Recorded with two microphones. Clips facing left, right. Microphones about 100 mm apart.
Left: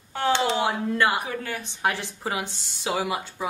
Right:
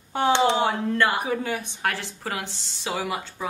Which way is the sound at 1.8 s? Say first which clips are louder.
Left 2 dB; 15° left (ahead or behind).